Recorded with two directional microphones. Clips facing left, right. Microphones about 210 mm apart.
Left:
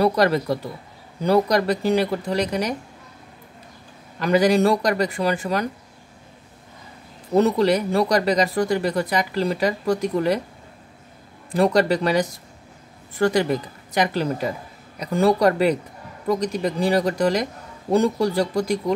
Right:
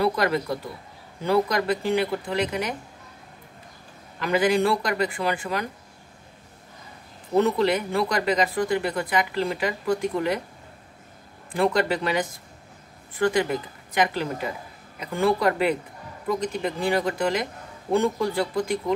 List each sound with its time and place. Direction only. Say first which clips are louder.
0.0 s speech: left 4 dB; 40° left (ahead or behind)
4.2 s speech: left 4 dB; 40° left (ahead or behind)
7.3 s speech: left 3 dB; 40° left (ahead or behind)
11.5 s speech: left 4 dB; 40° left (ahead or behind)